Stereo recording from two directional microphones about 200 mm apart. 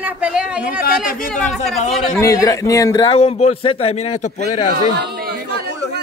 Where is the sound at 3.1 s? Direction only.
30° left (ahead or behind).